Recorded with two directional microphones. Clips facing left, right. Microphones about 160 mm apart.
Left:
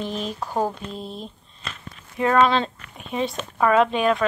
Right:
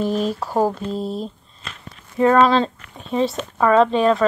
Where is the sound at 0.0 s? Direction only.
40° right (ahead or behind).